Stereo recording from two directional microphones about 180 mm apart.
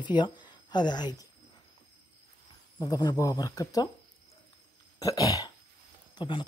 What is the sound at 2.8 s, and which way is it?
Speech, 20° left (ahead or behind).